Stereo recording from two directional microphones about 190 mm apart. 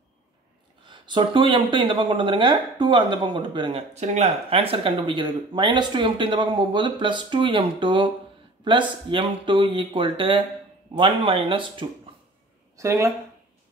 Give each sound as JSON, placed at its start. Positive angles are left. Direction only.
{"t": 0.8, "sound": "speech", "side_deg": -25}
{"t": 12.7, "sound": "speech", "side_deg": -15}